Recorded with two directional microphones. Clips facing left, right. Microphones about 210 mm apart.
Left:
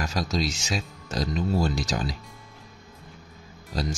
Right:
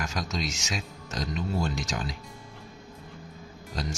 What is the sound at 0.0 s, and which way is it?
A man's voice, 35° left (ahead or behind).